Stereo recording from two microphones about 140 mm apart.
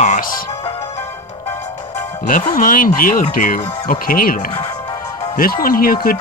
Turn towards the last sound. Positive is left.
turn(degrees=90)